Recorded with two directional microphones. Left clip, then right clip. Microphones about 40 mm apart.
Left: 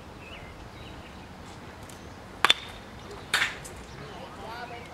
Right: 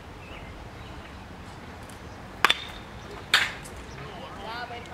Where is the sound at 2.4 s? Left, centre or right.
Centre.